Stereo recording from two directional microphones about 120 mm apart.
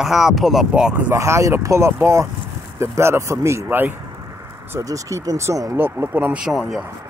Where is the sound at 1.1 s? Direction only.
25° right (ahead or behind); by 6.8 s centre (ahead or behind).